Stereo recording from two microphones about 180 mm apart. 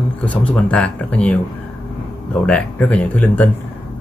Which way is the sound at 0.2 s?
10° left (ahead or behind).